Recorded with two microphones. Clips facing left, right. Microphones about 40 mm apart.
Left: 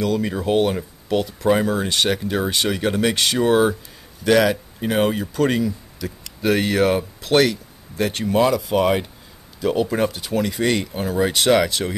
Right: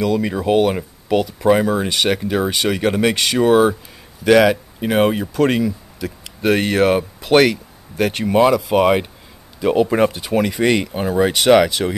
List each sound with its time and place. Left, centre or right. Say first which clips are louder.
0.0 s speech: right 3 dB; centre
2.9 s speech: right 3 dB; centre
3.2 s speech: right 3 dB; centre
4.2 s speech: right 4 dB; centre
6.4 s speech: right 3 dB; right
10.2 s speech: right 4 dB; right